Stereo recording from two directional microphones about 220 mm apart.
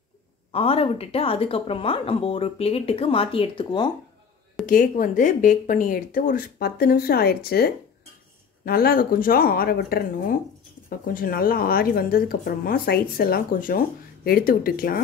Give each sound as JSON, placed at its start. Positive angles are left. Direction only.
{"t": 0.5, "sound": "a woman's voice", "side_deg": 25}
{"t": 4.6, "sound": "a woman's voice", "side_deg": 40}